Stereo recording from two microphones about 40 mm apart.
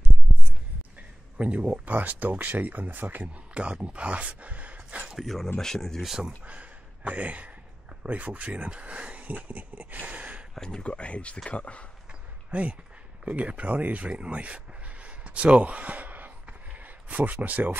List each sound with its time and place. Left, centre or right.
0.3 s a sound: centre
1.4 s speech: right
3.5 s speech: right
5.2 s speech: centre
6.4 s a sound: right
8.0 s speech: right
10.5 s speech: centre
10.8 s speech: left
12.4 s speech: right